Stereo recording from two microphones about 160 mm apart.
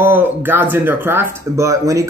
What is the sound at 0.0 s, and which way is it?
Speech, 10° right (ahead or behind).